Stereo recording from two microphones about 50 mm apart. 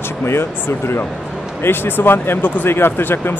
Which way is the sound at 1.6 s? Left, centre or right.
Left.